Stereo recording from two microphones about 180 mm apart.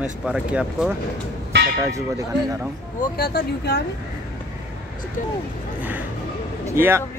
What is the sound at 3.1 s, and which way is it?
Speech, 60° left (ahead or behind).